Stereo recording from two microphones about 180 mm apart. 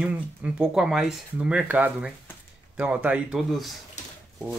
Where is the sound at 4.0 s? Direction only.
40° left (ahead or behind).